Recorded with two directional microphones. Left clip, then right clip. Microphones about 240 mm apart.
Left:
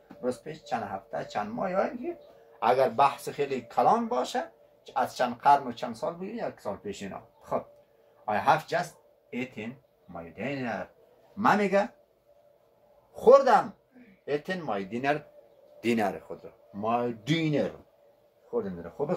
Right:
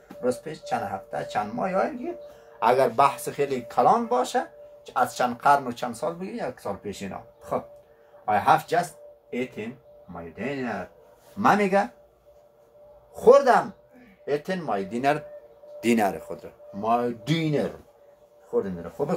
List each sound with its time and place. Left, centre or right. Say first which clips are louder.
0.2 s speech: right 6 dB; right; by 10.7 s centre
11.4 s speech: right 3 dB; centre
13.1 s speech: right 2 dB; centre